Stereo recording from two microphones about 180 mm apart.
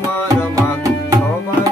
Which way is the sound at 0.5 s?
20° right (ahead or behind).